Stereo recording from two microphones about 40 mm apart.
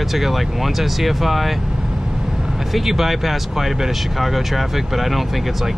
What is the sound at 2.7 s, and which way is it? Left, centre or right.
Speech, centre.